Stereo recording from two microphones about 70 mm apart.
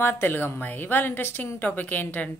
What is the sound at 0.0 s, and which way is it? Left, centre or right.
A woman's voice, left.